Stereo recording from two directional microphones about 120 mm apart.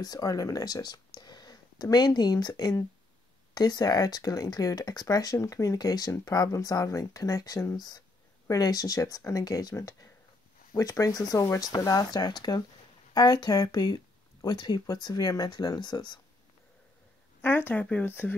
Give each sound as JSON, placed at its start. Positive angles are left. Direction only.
{"t": 0.0, "sound": "speech", "side_deg": 30}
{"t": 17.4, "sound": "speech", "side_deg": 15}